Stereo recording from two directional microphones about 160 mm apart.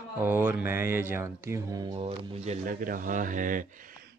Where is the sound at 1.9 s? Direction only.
40° right (ahead or behind).